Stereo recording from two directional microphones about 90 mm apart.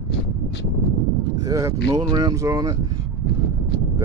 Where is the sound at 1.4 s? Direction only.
40° right (ahead or behind).